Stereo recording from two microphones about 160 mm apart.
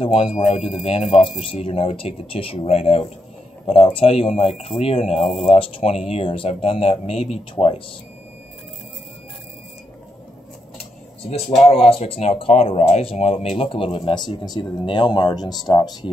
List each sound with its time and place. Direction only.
0.0 s speech: 35° left (ahead or behind)
0.3 s speech: 45° left (ahead or behind)
11.2 s speech: 40° left (ahead or behind)